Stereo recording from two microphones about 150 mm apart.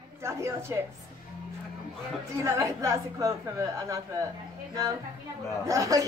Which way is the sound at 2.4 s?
20° right (ahead or behind).